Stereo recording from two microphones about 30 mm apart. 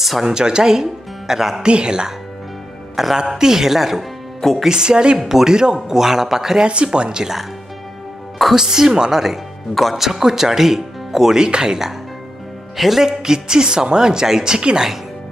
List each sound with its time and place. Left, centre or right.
0.0 s a woman's voice: centre
0.3 s speech: right
1.6 s speech: right
3.0 s speech: centre
4.6 s speech: right
5.3 s speech: centre
6.6 s speech: right
8.5 s speech: centre
9.9 s speech: centre
11.4 s speech: right
12.7 s speech: centre
13.0 s speech: right